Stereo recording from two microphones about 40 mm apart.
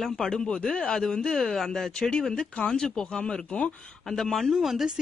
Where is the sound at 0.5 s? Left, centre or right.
Left; by 1.9 s centre.